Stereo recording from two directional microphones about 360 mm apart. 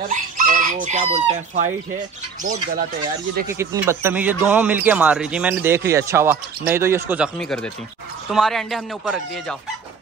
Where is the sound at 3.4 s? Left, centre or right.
Centre.